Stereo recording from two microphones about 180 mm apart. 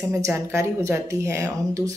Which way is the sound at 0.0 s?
15° right (ahead or behind).